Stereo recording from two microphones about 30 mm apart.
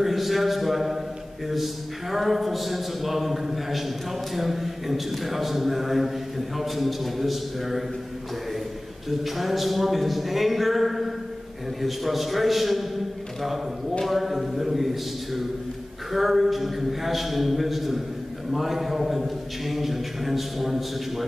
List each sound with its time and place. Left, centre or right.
0.0 s a sound: centre
1.5 s a man's voice: centre
9.2 s a man's voice: centre
14.0 s a man's voice: centre